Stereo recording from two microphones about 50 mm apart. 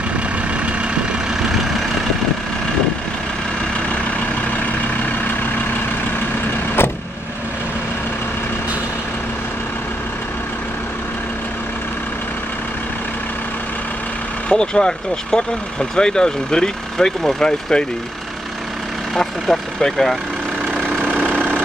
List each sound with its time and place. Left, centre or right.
1.3 s vehicle: centre
6.8 s vehicle: left
14.5 s speech: centre
19.1 s speech: centre
21.0 s engine: right